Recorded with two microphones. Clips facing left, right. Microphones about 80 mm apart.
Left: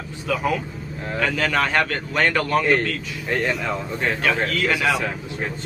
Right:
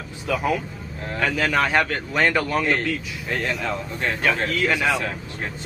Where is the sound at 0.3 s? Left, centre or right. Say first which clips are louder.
Even; centre.